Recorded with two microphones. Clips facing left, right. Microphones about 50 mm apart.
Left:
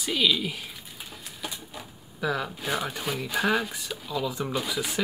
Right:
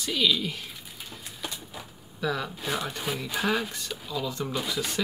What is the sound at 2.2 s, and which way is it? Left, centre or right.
Speech, centre.